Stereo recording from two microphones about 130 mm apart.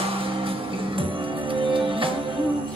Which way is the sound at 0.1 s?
45° right (ahead or behind).